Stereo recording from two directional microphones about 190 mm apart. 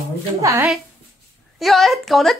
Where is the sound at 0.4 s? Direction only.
15° right (ahead or behind).